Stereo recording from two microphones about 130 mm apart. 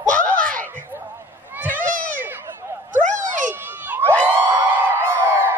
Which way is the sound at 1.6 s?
90° right.